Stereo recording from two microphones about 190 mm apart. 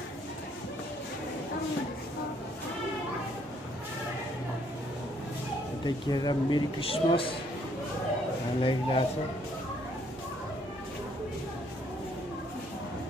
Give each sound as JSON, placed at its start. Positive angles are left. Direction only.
{"t": 5.9, "sound": "speech", "side_deg": 20}
{"t": 8.5, "sound": "speech", "side_deg": 25}